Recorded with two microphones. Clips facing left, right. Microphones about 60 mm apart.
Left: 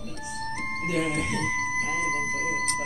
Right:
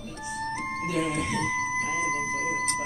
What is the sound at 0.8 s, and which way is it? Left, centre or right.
Speech, centre.